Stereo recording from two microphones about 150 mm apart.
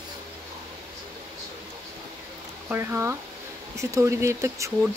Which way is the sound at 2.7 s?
15° right (ahead or behind).